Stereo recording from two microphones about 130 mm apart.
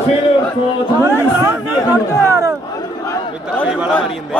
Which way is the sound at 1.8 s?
25° left (ahead or behind).